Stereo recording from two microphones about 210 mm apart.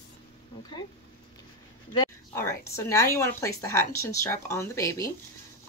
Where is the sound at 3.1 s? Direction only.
15° left (ahead or behind).